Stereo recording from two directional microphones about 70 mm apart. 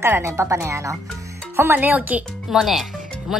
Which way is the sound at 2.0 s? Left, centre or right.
Centre.